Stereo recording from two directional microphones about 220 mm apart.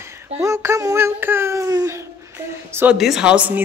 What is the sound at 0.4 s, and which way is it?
A woman's voice, 10° right (ahead or behind).